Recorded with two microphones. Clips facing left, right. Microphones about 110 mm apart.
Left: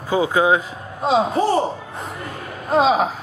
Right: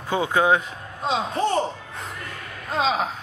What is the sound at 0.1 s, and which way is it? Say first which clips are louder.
Speech: left 3 dB; 15° left (ahead or behind).